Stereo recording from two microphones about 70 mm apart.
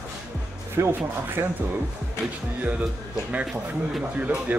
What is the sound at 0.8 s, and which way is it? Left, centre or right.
Speech, right.